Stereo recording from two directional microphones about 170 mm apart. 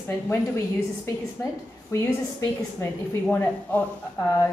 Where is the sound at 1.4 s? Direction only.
15° left (ahead or behind).